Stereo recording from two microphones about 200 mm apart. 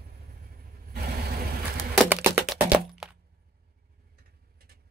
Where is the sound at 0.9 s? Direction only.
50° right (ahead or behind).